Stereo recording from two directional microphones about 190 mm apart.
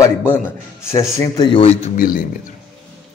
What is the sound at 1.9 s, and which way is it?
Speech, 45° left (ahead or behind).